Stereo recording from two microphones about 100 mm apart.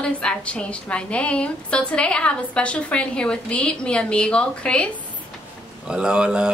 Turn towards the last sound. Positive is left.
turn(degrees=-10)  # may be behind; listen again after turning